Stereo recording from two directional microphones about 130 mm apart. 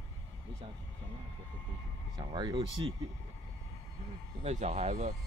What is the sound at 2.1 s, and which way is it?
Speech, 35° right (ahead or behind).